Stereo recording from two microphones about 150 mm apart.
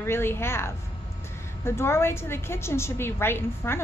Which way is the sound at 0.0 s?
15° left (ahead or behind).